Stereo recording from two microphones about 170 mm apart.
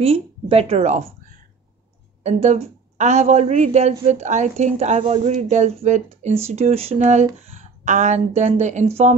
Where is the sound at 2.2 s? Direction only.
40° right (ahead or behind).